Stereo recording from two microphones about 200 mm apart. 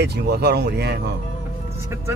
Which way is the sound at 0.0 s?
55° right (ahead or behind).